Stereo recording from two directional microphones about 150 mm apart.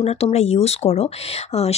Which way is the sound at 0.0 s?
45° left (ahead or behind).